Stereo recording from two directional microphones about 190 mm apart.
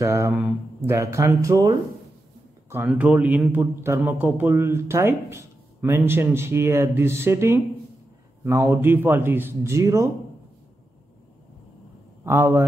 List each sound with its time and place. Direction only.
0.0 s speech: 15° right (ahead or behind)
2.9 s a man's voice: 5° right (ahead or behind)
12.3 s a man's voice: 15° right (ahead or behind)